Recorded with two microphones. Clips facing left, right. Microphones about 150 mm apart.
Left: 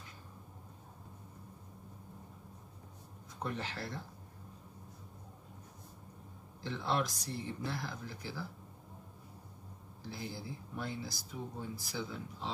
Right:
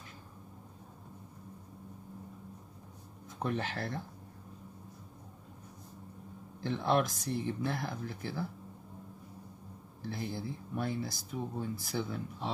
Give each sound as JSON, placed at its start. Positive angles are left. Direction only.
{"t": 3.4, "sound": "speech", "side_deg": -55}
{"t": 6.6, "sound": "speech", "side_deg": -55}
{"t": 10.0, "sound": "speech", "side_deg": -55}